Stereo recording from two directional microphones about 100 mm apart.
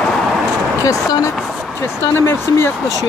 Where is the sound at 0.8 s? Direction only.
35° left (ahead or behind).